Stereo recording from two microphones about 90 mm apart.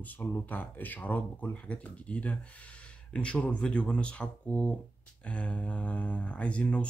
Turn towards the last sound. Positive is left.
turn(degrees=15)  # may be behind; listen again after turning